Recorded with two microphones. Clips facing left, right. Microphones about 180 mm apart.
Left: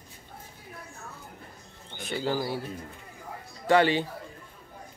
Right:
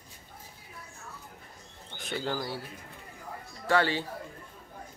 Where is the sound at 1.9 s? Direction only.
Centre (ahead or behind).